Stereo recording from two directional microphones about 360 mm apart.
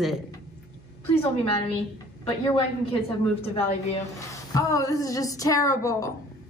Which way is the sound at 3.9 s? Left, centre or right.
Centre.